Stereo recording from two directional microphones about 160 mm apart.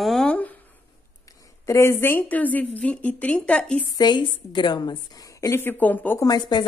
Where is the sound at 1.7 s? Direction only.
15° left (ahead or behind).